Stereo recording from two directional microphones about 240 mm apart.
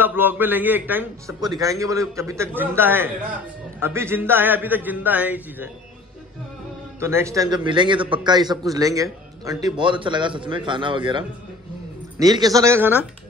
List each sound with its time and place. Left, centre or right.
0.0 s a man's voice: centre
7.0 s a man's voice: centre